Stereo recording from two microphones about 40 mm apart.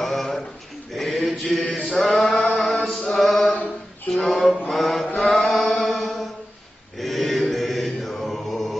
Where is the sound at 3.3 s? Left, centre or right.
Left.